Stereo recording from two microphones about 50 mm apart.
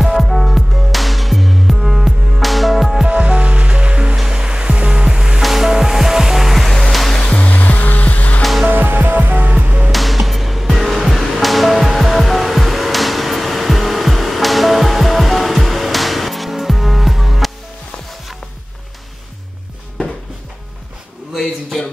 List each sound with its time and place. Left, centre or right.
0.0 s music: centre
3.1 s music: right; by 7.2 s centre
7.2 s music: left
8.4 s music: centre
8.6 s music: right
9.8 s music: centre
21.3 s a sound: centre